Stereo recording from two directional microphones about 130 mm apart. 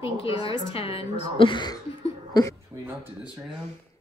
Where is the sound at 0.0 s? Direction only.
45° left (ahead or behind).